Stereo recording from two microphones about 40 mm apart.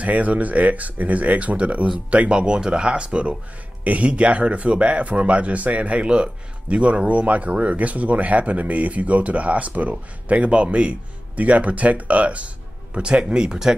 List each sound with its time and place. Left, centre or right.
0.0 s speech: right; by 13.7 s centre